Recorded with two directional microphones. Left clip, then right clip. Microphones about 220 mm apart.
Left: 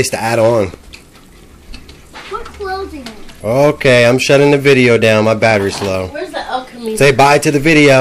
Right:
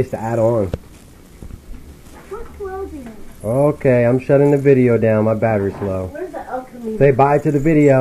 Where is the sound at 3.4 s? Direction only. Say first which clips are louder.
Left 5 dB; 20° left (ahead or behind).